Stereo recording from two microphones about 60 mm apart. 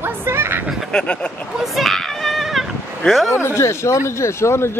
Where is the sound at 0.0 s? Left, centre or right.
Right.